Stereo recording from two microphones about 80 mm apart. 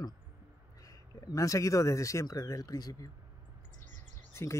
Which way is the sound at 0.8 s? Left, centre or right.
Left.